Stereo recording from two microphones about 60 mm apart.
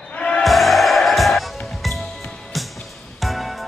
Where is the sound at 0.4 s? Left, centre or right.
Centre.